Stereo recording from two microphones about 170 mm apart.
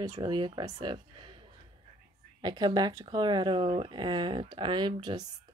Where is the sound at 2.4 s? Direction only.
25° right (ahead or behind).